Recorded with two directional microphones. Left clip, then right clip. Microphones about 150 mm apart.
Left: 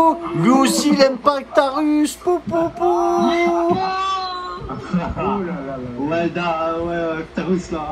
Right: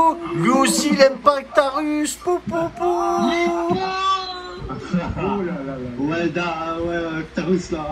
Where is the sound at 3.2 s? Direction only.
5° left (ahead or behind).